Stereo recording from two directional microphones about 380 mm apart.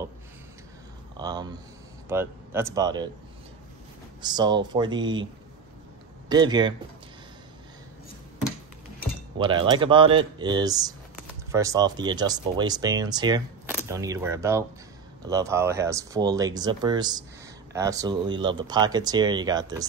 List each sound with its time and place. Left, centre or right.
1.1 s speech: centre
4.2 s speech: centre
6.2 s speech: centre
9.4 s speech: centre